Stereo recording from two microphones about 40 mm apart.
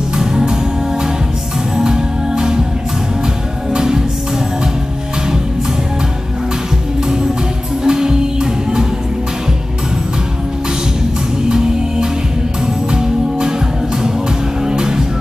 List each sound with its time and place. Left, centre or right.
0.1 s music: centre
1.8 s music: centre
3.7 s music: centre
7.8 s music: centre
11.4 s music: centre
14.6 s music: centre